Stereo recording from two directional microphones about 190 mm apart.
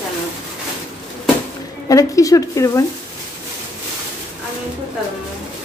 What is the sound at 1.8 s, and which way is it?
A woman's voice, 20° left (ahead or behind).